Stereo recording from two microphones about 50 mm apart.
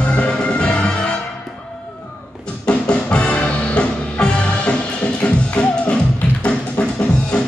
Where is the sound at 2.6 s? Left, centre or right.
Left.